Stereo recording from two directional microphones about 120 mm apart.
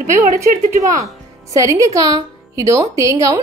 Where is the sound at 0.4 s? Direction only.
25° right (ahead or behind).